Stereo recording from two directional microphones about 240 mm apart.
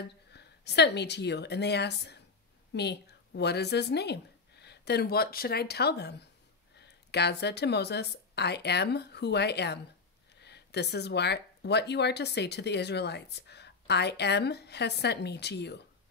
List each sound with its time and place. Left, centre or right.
0.0 s a woman's voice: left